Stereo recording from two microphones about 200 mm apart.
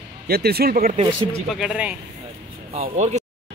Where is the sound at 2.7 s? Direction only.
35° right (ahead or behind).